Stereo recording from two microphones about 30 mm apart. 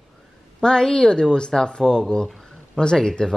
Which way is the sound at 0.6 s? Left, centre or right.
Left.